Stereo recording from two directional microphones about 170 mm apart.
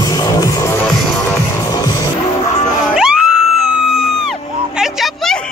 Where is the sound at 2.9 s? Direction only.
5° right (ahead or behind).